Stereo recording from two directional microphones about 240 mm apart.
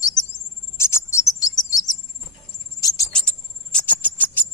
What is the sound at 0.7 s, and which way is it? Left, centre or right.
Cricket, centre.